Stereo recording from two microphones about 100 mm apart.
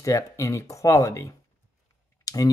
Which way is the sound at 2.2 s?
35° left (ahead or behind).